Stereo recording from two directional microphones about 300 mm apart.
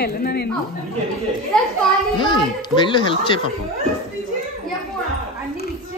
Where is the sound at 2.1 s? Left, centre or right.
Centre.